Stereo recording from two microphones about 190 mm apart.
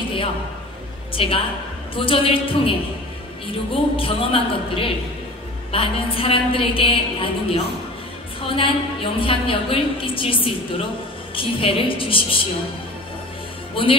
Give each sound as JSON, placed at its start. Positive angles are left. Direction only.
{"t": 1.1, "sound": "a woman's voice", "side_deg": 30}
{"t": 3.9, "sound": "a woman's voice", "side_deg": 30}
{"t": 13.8, "sound": "a woman's voice", "side_deg": 30}